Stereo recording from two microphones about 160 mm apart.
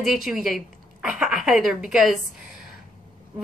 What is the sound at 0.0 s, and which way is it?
A woman's voice, centre (ahead or behind).